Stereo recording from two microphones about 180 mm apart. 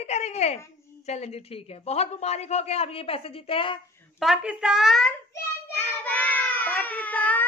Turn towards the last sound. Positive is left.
turn(degrees=10)  # may be behind; listen again after turning